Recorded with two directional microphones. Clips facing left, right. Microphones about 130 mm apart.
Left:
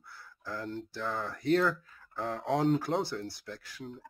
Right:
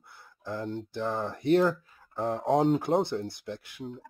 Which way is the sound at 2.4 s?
45° right (ahead or behind).